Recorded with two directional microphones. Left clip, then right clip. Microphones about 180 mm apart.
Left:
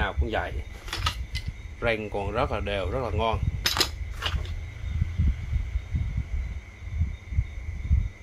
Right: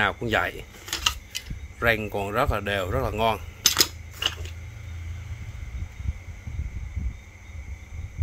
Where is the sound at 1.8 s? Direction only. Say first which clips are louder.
Right 4 dB; 30° right (ahead or behind).